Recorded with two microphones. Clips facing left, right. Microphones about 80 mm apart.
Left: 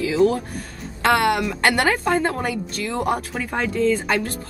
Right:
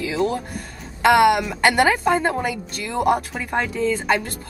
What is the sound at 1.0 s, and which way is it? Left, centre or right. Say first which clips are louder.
A woman's voice: right 4 dB; centre.